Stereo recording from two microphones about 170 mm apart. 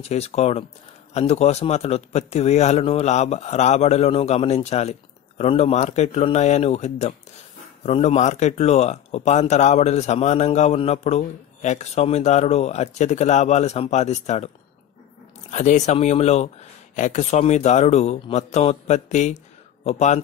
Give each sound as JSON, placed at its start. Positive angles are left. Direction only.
{"t": 0.0, "sound": "speech", "side_deg": 40}
{"t": 15.5, "sound": "speech", "side_deg": 45}